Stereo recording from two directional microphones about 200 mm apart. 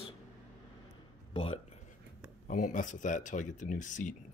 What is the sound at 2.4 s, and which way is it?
Speech, 40° left (ahead or behind).